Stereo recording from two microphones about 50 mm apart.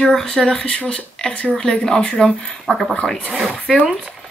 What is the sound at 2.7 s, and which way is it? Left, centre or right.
Speech, centre.